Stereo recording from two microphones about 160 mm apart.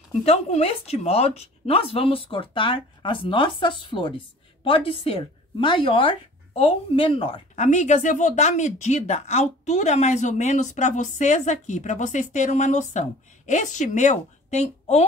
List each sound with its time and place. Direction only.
0.2 s speech: 40° left (ahead or behind)